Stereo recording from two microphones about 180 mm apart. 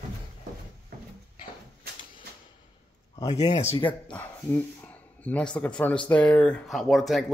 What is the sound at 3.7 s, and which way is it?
Speech, 10° left (ahead or behind).